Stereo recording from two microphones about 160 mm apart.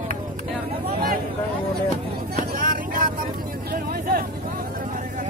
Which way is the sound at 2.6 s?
60° right (ahead or behind).